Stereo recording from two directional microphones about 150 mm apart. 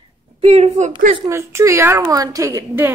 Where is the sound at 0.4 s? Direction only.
45° right (ahead or behind).